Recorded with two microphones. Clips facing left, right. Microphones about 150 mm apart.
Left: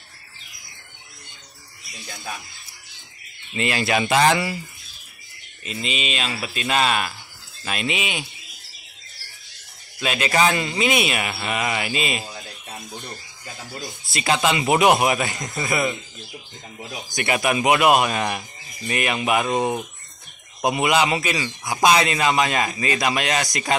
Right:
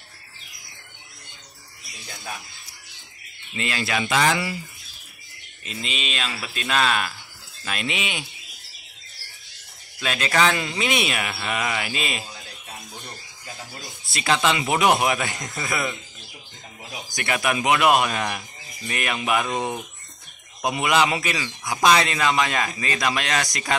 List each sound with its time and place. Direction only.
3.5 s speech: 20° left (ahead or behind)
5.7 s speech: 5° left (ahead or behind)
10.0 s speech: 10° left (ahead or behind)
11.9 s speech: 5° left (ahead or behind)
14.2 s speech: 10° left (ahead or behind)
17.1 s speech: 15° left (ahead or behind)
20.6 s speech: 10° left (ahead or behind)